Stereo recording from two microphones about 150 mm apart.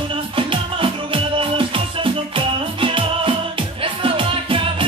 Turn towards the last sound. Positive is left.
turn(degrees=-35)  # may be behind; listen again after turning